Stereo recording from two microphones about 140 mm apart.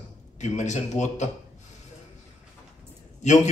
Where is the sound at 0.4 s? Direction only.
55° left (ahead or behind).